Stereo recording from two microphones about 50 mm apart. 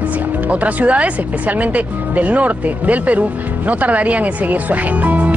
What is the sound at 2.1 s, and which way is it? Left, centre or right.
Music, right.